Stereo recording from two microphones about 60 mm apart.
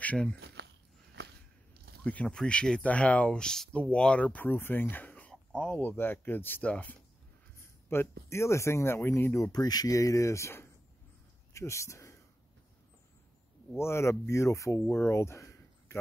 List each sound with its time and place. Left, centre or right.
0.0 s speech: left
2.2 s speech: centre
5.8 s speech: left
6.6 s speech: left
7.9 s speech: left
9.4 s speech: left
11.5 s speech: left
13.7 s speech: left